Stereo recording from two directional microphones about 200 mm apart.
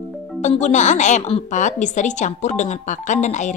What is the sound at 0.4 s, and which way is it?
A woman's voice, 35° left (ahead or behind).